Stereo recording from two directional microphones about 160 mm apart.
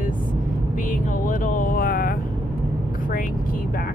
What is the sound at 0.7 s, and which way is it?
Vehicle, 55° left (ahead or behind).